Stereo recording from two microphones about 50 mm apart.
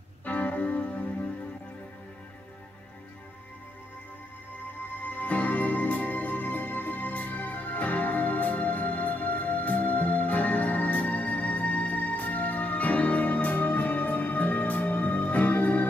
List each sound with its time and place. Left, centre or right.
0.2 s music: left
5.1 s music: left